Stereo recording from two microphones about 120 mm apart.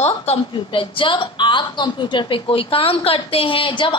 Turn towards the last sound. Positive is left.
turn(degrees=45)  # may be behind; listen again after turning